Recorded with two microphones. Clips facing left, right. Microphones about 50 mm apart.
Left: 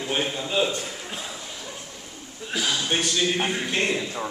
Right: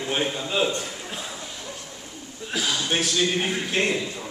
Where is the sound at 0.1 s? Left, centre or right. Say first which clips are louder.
Even; centre.